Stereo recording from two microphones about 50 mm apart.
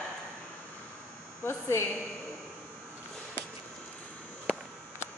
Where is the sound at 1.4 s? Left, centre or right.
Left.